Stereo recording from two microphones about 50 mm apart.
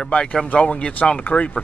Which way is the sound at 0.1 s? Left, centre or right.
Centre.